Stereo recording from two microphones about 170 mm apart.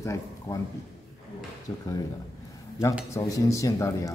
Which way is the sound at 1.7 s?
20° left (ahead or behind).